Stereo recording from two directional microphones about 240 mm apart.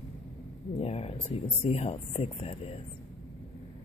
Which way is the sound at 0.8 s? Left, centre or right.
Left.